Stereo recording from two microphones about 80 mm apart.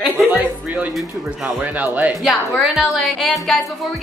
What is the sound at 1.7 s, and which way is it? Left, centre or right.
Speech, centre.